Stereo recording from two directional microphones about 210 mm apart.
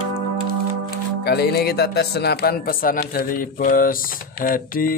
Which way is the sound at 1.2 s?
50° left (ahead or behind).